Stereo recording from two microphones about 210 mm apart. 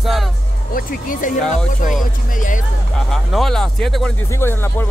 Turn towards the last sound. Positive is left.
turn(degrees=10)  # may be behind; listen again after turning